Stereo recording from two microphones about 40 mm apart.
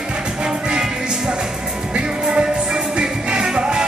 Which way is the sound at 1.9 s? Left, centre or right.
Right.